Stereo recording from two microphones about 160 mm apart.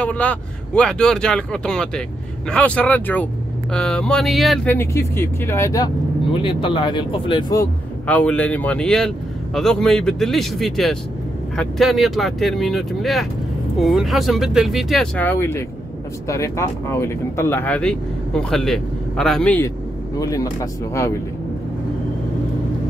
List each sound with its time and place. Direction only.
0.0 s speech: 10° left (ahead or behind)
4.6 s speech: 15° left (ahead or behind)
6.3 s speech: 35° left (ahead or behind)
8.1 s speech: 10° left (ahead or behind)
15.1 s speech: 15° left (ahead or behind)
20.2 s speech: 20° left (ahead or behind)